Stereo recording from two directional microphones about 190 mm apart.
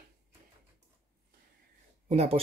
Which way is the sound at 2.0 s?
35° right (ahead or behind).